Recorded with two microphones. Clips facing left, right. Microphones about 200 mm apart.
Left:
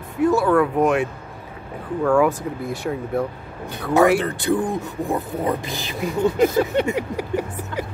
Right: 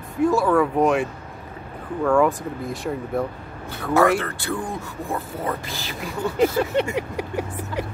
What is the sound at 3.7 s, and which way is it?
Speech, 15° left (ahead or behind).